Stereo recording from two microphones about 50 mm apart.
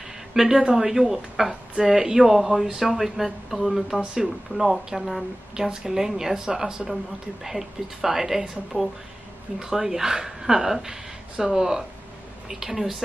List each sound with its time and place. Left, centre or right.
0.3 s a woman's voice: centre
4.0 s a woman's voice: centre